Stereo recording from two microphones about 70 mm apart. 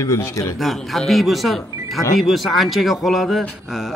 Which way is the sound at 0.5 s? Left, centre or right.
Centre.